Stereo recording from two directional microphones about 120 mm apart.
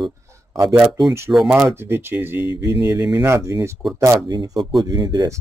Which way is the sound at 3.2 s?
25° right (ahead or behind).